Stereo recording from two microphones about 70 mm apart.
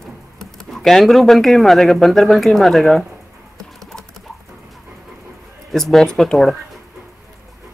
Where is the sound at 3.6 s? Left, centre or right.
Centre.